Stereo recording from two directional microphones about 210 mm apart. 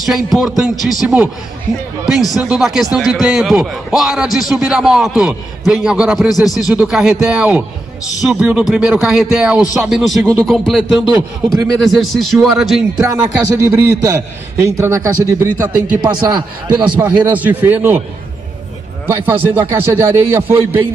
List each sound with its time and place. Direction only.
0.0 s speech: centre (ahead or behind)
13.0 s a man's voice: 10° right (ahead or behind)
16.9 s a man's voice: 10° right (ahead or behind)
19.0 s a man's voice: 10° right (ahead or behind)